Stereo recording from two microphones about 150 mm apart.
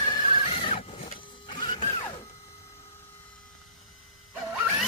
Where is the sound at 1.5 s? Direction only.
35° left (ahead or behind).